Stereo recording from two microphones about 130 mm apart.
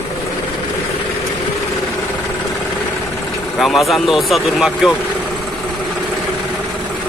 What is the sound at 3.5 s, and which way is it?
Speech, centre (ahead or behind).